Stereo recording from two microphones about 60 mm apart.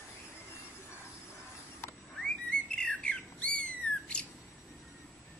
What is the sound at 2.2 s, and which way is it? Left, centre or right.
Bird, centre.